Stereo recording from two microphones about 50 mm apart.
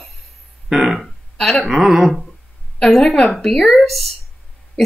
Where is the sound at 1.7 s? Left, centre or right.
Centre.